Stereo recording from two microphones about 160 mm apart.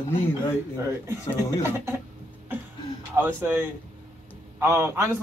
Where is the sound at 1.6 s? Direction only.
15° right (ahead or behind).